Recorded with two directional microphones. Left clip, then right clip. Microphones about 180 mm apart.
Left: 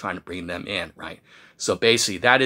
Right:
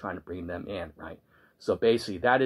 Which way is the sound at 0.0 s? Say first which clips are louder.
Left 6 dB; 15° left (ahead or behind).